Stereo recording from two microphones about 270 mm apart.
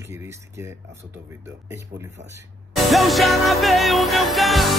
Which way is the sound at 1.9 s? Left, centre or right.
Right.